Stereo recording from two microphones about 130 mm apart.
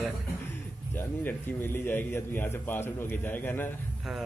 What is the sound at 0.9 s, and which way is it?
A man's voice, 15° left (ahead or behind).